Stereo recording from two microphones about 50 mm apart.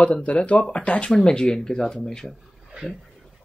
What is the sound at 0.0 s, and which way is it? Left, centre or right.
Speech, left.